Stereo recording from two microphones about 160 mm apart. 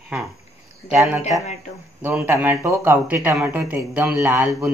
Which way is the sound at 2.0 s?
15° right (ahead or behind).